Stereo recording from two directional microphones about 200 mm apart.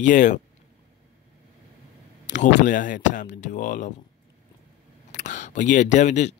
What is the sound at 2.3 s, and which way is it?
Speech, 40° left (ahead or behind).